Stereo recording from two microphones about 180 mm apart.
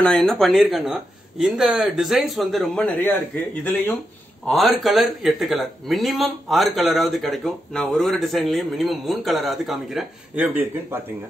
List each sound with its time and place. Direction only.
0.0 s a man's voice: 5° left (ahead or behind)
4.5 s a man's voice: centre (ahead or behind)